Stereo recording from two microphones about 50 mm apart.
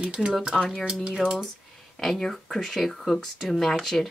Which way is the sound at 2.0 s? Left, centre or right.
Centre.